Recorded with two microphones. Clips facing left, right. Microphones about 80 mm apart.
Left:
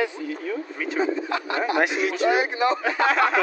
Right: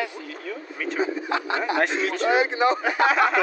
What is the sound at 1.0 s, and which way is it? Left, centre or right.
Speech, right.